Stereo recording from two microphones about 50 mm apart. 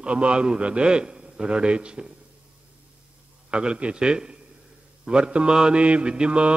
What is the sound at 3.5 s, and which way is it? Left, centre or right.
A man's voice, right.